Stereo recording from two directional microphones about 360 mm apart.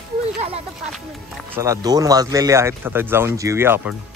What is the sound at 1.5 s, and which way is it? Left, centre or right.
Speech, centre.